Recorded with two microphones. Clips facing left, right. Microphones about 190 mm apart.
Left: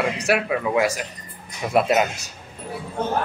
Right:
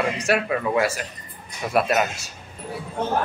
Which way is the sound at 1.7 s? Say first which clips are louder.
Left 2 dB; 20° left (ahead or behind).